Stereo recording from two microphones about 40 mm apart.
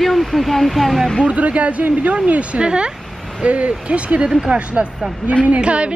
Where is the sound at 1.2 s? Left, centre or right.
Right.